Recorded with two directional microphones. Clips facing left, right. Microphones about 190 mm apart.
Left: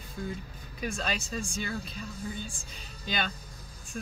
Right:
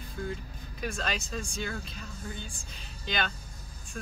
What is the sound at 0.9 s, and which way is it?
Speech, 10° left (ahead or behind).